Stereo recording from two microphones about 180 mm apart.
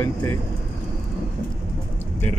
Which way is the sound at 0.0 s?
15° left (ahead or behind).